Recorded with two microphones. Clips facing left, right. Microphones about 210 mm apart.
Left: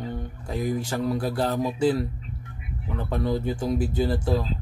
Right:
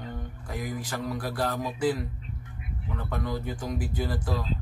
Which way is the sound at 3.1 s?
30° left (ahead or behind).